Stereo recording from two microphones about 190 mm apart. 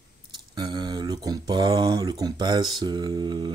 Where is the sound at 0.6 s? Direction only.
20° right (ahead or behind).